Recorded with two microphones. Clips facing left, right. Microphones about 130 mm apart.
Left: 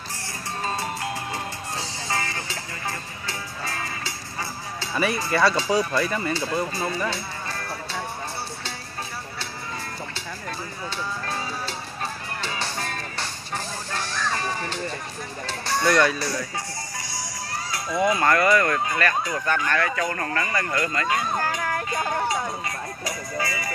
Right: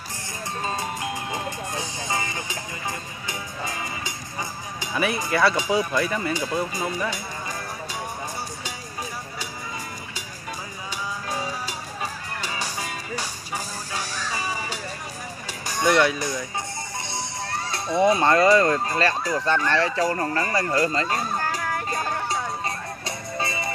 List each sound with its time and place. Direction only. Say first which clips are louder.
0.7 s music: left 1 dB; 20° right (ahead or behind)
4.9 s speech: even; 5° right (ahead or behind)
5.5 s speech: even; 15° right (ahead or behind)
5.9 s speech: even; 5° right (ahead or behind)
6.3 s speech: even; 15° right (ahead or behind)
7.1 s music: left 1 dB; 15° right (ahead or behind)
11.2 s music: right 1 dB; 10° right (ahead or behind)
17.6 s speech: right 3 dB; 30° right (ahead or behind)
22.3 s music: even; 30° right (ahead or behind)